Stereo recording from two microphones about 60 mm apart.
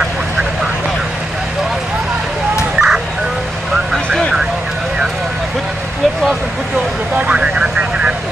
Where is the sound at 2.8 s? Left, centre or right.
Centre.